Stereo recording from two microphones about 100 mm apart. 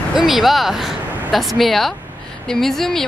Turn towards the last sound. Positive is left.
turn(degrees=5)  # may be behind; listen again after turning